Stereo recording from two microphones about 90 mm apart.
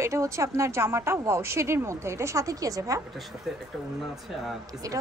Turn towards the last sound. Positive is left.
turn(degrees=-40)  # may be behind; listen again after turning